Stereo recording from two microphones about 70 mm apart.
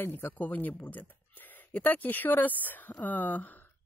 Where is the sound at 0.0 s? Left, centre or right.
Left.